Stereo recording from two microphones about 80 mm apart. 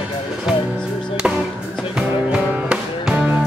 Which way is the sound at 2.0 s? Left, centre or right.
Centre.